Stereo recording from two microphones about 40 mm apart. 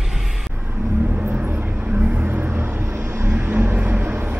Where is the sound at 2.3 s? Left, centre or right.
Right.